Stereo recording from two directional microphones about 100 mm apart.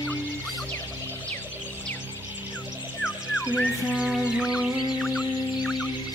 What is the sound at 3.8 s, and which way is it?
Music, 10° right (ahead or behind).